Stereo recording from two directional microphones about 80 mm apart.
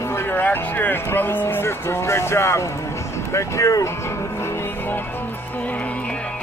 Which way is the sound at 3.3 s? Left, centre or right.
Left.